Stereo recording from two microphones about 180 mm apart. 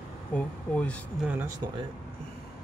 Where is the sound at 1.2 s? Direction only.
10° right (ahead or behind).